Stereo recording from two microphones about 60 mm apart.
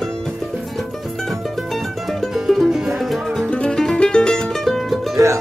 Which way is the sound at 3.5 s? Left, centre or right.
Centre.